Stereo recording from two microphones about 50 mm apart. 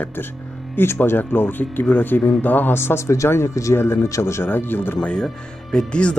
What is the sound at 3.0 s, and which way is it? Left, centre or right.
Speech, left.